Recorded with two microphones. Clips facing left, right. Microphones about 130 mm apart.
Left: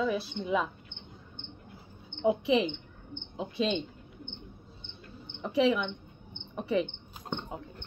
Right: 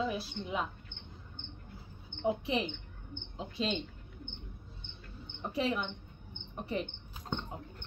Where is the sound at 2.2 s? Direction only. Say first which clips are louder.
Left 6 dB; 80° left.